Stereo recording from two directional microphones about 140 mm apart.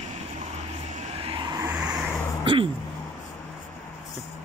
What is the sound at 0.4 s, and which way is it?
Vehicle, 55° right (ahead or behind).